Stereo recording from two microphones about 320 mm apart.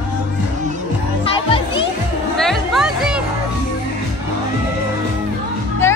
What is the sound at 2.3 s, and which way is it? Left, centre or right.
Music, centre.